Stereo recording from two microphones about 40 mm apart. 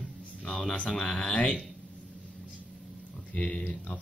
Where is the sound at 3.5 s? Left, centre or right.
Left.